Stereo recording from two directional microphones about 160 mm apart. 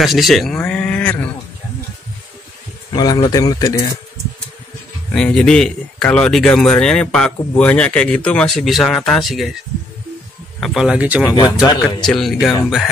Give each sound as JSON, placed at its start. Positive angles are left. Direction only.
{"t": 0.0, "sound": "speech", "side_deg": 0}
{"t": 2.9, "sound": "speech", "side_deg": 25}
{"t": 5.1, "sound": "a man's voice", "side_deg": 5}
{"t": 10.6, "sound": "a man's voice", "side_deg": 0}
{"t": 11.6, "sound": "speech", "side_deg": 25}
{"t": 12.0, "sound": "a man's voice", "side_deg": 0}